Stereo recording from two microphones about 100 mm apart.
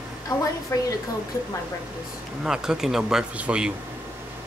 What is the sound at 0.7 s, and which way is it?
Speech, 30° left (ahead or behind).